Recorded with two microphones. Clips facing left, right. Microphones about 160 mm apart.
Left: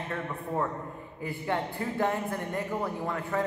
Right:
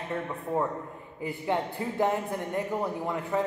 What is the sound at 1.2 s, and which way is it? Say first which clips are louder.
A man's voice: right 2 dB; 15° right (ahead or behind).